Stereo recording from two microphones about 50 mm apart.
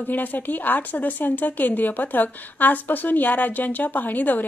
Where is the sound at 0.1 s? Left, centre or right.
Left.